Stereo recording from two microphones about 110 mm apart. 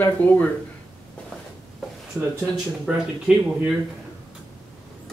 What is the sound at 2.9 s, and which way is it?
Speech, 10° right (ahead or behind).